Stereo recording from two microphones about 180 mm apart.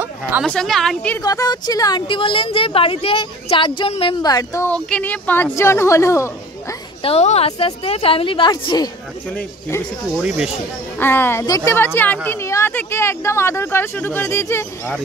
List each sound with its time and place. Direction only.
0.5 s a woman's voice: centre (ahead or behind)
1.2 s a woman's voice: 20° left (ahead or behind)
4.6 s a woman's voice: 5° left (ahead or behind)
7.0 s speech: 35° left (ahead or behind)
10.2 s a woman's voice: 5° right (ahead or behind)
11.0 s a woman's voice: 10° left (ahead or behind)